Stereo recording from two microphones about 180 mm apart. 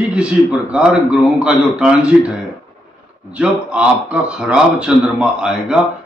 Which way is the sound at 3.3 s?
5° right (ahead or behind).